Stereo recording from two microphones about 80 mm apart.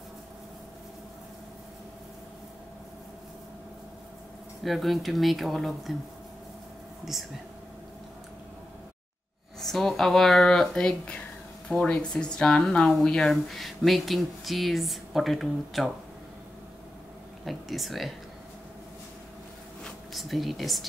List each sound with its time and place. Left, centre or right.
4.6 s speech: centre
9.6 s speech: centre
17.5 s speech: centre
19.8 s a sound: centre